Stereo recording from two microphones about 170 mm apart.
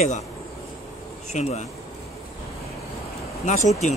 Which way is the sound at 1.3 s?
40° left (ahead or behind).